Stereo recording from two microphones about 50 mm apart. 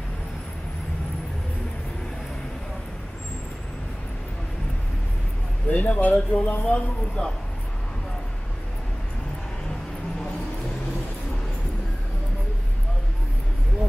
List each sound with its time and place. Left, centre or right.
5.7 s speech: left
6.1 s speech: left